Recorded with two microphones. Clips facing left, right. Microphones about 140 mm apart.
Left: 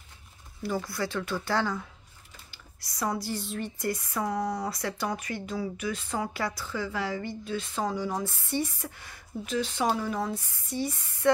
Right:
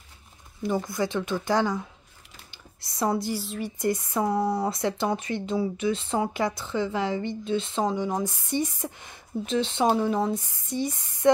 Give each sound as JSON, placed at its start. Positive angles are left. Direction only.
{"t": 0.6, "sound": "speech", "side_deg": -20}
{"t": 3.3, "sound": "a woman's voice", "side_deg": -5}
{"t": 3.7, "sound": "speech", "side_deg": -20}